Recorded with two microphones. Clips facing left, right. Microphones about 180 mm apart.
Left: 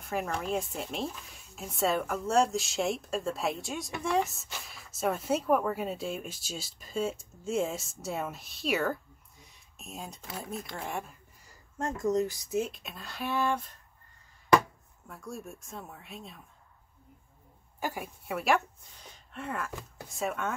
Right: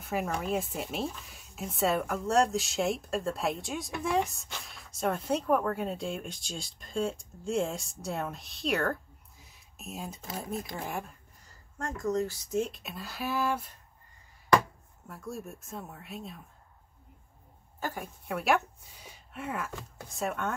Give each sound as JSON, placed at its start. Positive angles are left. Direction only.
{"t": 0.0, "sound": "speech", "side_deg": -5}
{"t": 9.4, "sound": "a sound", "side_deg": 0}
{"t": 10.3, "sound": "speech", "side_deg": 0}
{"t": 11.8, "sound": "speech", "side_deg": 20}
{"t": 12.4, "sound": "speech", "side_deg": 5}
{"t": 15.0, "sound": "speech", "side_deg": 0}
{"t": 17.7, "sound": "speech", "side_deg": 10}